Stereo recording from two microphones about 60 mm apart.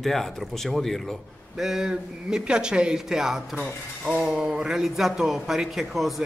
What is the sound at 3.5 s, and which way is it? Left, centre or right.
Speech, right.